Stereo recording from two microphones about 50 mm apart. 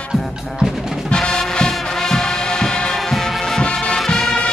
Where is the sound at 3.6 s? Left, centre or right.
Centre.